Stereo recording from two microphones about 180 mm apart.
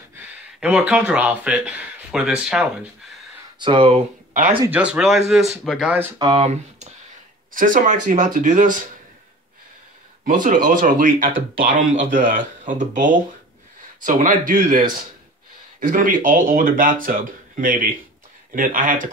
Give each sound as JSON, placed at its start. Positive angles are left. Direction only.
{"t": 0.1, "sound": "speech", "side_deg": -5}
{"t": 3.5, "sound": "speech", "side_deg": -25}
{"t": 4.6, "sound": "speech", "side_deg": -5}
{"t": 6.1, "sound": "speech", "side_deg": -25}
{"t": 6.4, "sound": "speech", "side_deg": -40}
{"t": 10.2, "sound": "speech", "side_deg": -45}